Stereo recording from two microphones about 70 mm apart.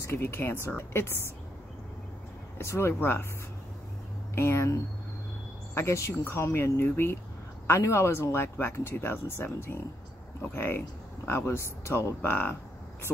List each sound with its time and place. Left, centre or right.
0.0 s speech: left
2.6 s speech: left
2.9 s speech: left
4.4 s speech: left
5.8 s speech: left
12.2 s speech: left